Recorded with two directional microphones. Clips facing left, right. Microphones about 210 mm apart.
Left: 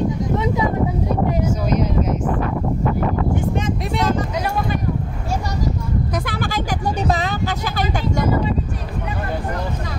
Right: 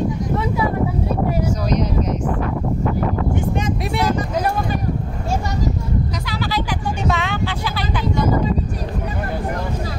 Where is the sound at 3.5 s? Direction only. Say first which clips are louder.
Even; 10° right (ahead or behind).